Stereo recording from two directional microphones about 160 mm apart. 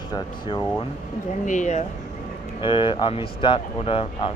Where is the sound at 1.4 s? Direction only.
50° left (ahead or behind).